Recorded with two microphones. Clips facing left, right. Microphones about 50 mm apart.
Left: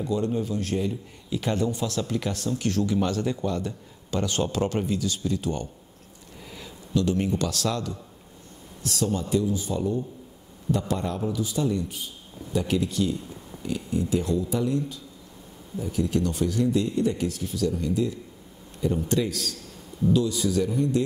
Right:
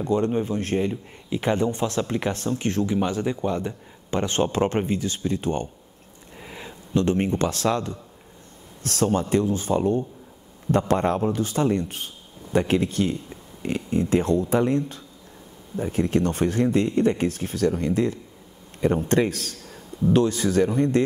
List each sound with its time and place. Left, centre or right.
0.0 s a man's voice: right
8.8 s speech: right